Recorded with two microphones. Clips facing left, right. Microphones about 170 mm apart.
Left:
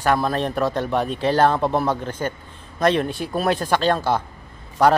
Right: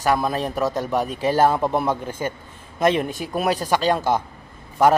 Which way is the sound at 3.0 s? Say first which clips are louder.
Left 2 dB; 45° right (ahead or behind).